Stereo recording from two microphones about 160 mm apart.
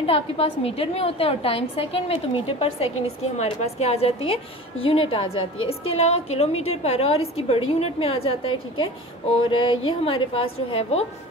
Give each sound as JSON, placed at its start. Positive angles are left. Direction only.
{"t": 0.0, "sound": "a woman's voice", "side_deg": 35}